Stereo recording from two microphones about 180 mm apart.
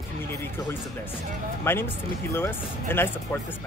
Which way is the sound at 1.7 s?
15° left (ahead or behind).